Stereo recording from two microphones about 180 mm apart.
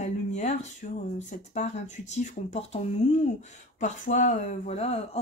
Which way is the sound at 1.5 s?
40° left (ahead or behind).